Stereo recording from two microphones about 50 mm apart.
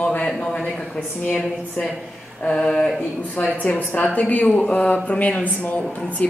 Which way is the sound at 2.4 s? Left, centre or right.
Centre.